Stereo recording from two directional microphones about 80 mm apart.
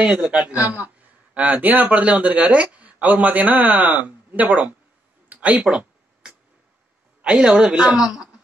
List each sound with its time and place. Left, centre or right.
0.0 s speech: centre
5.3 s a sound: centre
7.2 s a woman's voice: centre